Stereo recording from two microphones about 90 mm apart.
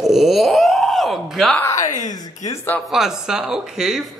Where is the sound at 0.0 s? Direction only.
Centre (ahead or behind).